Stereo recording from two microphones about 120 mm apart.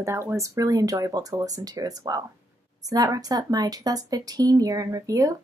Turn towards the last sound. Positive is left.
turn(degrees=-30)  # may be behind; listen again after turning